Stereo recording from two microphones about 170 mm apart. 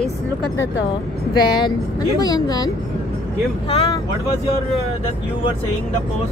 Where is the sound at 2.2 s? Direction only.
20° left (ahead or behind).